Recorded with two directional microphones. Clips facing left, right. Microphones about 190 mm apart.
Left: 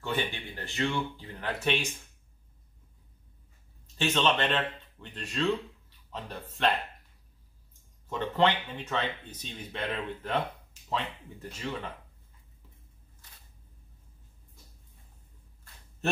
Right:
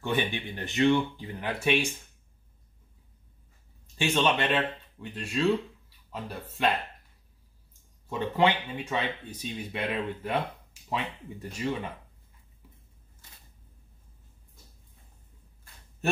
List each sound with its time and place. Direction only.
0.0 s speech: 15° right (ahead or behind)
4.0 s speech: 10° right (ahead or behind)
6.6 s speech: 5° right (ahead or behind)
8.1 s speech: 10° right (ahead or behind)